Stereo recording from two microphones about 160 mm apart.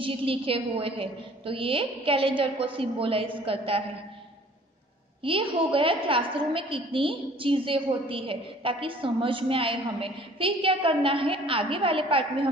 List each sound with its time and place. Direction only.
0.0 s a woman's voice: 35° right (ahead or behind)
5.2 s a woman's voice: 35° right (ahead or behind)